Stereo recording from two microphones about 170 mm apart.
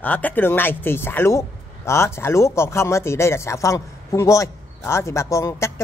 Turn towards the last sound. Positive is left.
turn(degrees=15)  # may be behind; listen again after turning